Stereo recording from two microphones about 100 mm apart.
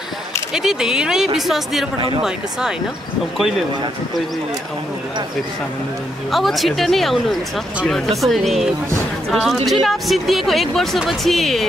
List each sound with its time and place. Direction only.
0.6 s speech: 5° right (ahead or behind)
2.0 s speech: 60° right (ahead or behind)
6.3 s speech: centre (ahead or behind)